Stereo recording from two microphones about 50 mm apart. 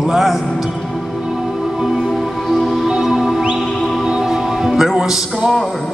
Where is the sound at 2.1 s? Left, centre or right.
Centre.